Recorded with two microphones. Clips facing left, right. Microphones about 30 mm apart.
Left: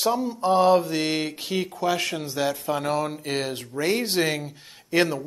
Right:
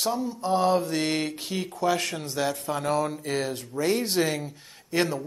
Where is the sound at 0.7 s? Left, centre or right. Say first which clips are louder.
Left 4 dB; centre.